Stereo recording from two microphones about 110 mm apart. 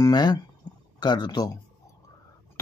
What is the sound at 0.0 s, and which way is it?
Speech, 40° left (ahead or behind).